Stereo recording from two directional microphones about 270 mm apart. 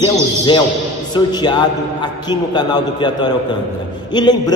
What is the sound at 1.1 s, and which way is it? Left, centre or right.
A man's voice, centre.